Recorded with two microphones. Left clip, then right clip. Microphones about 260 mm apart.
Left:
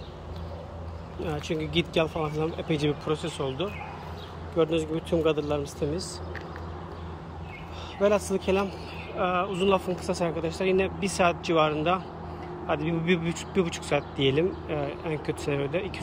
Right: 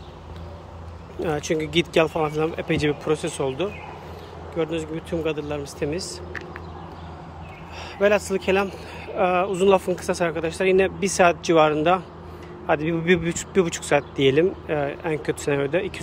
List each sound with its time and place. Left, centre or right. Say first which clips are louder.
1.2 s speech: right 7 dB; centre
4.6 s speech: left 1 dB; centre
8.0 s speech: right 4 dB; centre